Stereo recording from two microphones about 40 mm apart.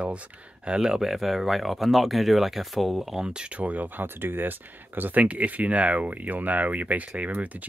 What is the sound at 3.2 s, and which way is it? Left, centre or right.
Speech, right.